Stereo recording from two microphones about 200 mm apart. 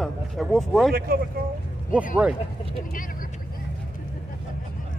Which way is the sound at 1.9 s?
5° right (ahead or behind).